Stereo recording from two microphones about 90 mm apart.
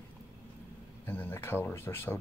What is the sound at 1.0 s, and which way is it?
Speech, 25° left (ahead or behind).